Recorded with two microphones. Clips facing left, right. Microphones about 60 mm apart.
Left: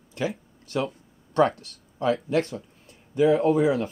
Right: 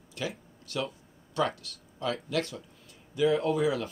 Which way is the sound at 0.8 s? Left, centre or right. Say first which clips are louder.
Left 6 dB; left.